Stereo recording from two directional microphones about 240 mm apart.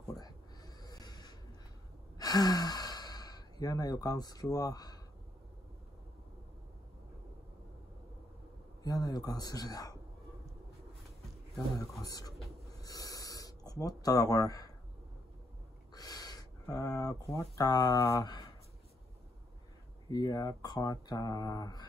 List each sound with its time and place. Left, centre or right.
0.1 s a sound: centre
2.1 s sigh: centre
8.8 s speech: centre
12.0 s speech: centre
12.8 s a sound: centre
15.9 s speech: centre
20.1 s speech: centre